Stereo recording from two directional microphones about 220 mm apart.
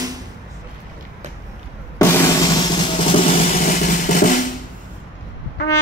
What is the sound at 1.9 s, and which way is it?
Music, 15° left (ahead or behind).